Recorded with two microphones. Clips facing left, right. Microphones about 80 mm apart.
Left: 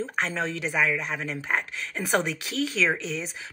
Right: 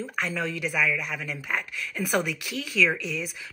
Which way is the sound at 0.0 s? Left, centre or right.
Left.